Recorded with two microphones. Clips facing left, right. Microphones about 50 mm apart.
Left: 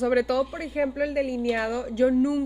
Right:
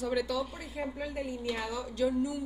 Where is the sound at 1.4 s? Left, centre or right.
Left.